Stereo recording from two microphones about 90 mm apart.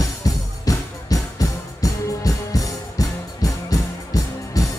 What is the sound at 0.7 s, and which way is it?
Music, 40° left (ahead or behind).